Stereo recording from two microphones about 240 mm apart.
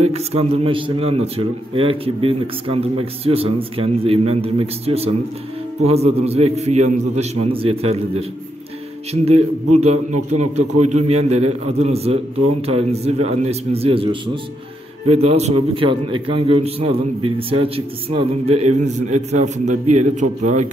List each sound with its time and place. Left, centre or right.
0.0 s a man's voice: right